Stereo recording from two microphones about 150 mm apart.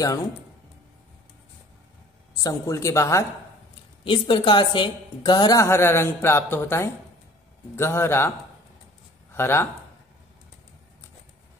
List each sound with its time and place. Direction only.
2.3 s a woman's voice: 20° left (ahead or behind)
4.0 s a woman's voice: 35° left (ahead or behind); by 8.3 s 15° left (ahead or behind)
9.3 s speech: 15° left (ahead or behind)